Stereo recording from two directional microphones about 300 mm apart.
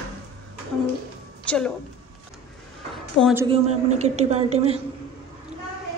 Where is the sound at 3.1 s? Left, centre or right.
Centre.